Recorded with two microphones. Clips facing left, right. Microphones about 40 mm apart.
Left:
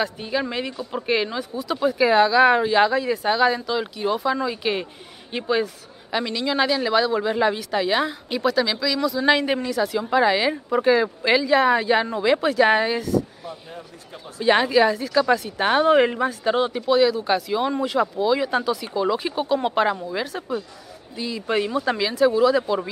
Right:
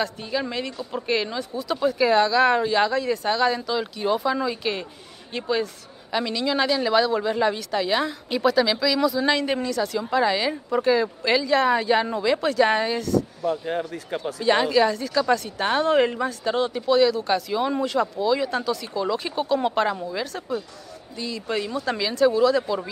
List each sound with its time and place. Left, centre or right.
0.0 s speech: centre
8.4 s speech: centre
9.2 s speech: centre
13.5 s speech: right
14.4 s speech: centre